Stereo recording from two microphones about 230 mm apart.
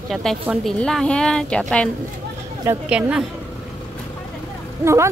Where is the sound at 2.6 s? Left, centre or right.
Centre.